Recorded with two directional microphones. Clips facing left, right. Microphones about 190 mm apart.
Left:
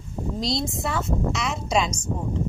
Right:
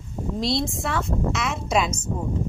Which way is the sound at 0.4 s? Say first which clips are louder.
Right 2 dB; centre (ahead or behind).